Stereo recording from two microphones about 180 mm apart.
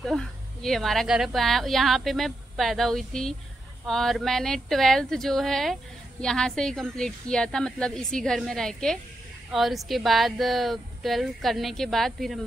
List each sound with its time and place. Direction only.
0.0 s a woman's voice: centre (ahead or behind)